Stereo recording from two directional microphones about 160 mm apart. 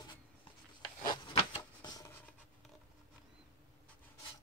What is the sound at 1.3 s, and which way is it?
Rub, 35° left (ahead or behind).